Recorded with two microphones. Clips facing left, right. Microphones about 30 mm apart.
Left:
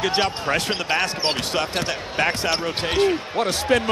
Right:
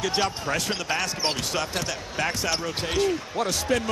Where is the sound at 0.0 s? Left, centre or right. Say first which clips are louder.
Left 4 dB; left.